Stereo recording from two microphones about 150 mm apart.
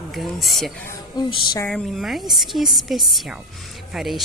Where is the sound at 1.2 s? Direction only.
30° left (ahead or behind).